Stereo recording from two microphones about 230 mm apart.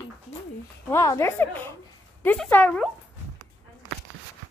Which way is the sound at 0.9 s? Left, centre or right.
Centre.